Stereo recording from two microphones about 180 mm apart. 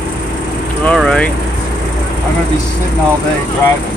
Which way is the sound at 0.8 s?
5° left (ahead or behind).